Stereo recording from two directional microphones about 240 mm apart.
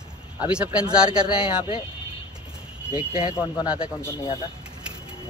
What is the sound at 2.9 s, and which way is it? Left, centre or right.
Speech, left.